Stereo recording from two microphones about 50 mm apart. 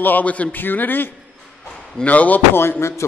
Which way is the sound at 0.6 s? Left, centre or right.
Left.